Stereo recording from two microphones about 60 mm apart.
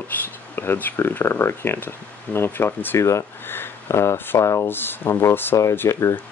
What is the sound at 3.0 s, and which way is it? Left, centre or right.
Speech, left.